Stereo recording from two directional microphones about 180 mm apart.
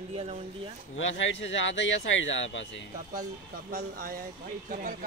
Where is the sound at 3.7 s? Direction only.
45° right (ahead or behind).